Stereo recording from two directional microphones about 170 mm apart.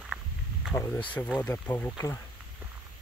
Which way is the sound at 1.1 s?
5° left (ahead or behind).